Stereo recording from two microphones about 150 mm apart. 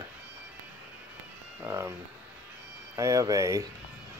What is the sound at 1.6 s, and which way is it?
Speech, 20° right (ahead or behind).